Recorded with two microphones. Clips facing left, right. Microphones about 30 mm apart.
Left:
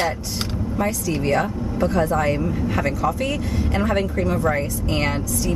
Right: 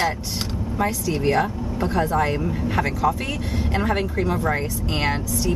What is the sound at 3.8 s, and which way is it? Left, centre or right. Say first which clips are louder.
Speech: left 1 dB; centre.